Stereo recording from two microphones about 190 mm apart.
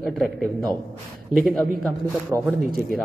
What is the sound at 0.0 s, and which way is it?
A man's voice, centre (ahead or behind).